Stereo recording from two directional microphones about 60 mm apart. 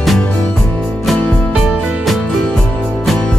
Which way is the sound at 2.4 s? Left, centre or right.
Centre.